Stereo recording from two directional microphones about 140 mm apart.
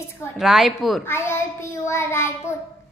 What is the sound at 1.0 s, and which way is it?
A child's voice, 20° left (ahead or behind).